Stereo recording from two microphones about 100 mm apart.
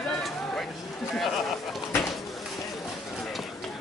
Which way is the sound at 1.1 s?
Centre (ahead or behind).